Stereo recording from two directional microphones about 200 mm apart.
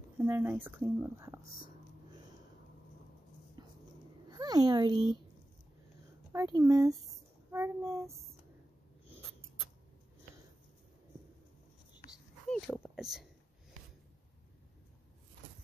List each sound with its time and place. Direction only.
0.2 s speech: 10° right (ahead or behind)
4.3 s speech: 20° right (ahead or behind)
6.3 s speech: 15° right (ahead or behind)
12.4 s a sound: centre (ahead or behind)
12.8 s speech: centre (ahead or behind)